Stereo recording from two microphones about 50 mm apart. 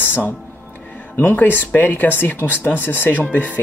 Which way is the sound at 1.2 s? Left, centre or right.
Left.